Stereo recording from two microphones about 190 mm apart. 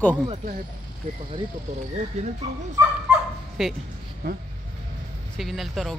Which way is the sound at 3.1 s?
5° right (ahead or behind).